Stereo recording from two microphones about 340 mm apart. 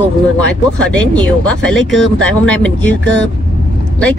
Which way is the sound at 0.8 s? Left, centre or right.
Centre.